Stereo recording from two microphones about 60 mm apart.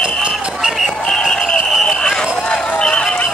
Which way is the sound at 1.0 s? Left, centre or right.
Centre.